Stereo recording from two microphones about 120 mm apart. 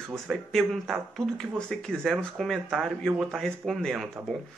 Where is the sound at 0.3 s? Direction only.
Centre (ahead or behind).